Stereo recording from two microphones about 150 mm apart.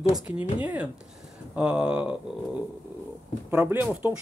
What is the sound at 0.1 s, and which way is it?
Pigeon, 10° right (ahead or behind).